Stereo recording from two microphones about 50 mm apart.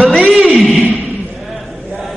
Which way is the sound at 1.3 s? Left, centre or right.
Centre.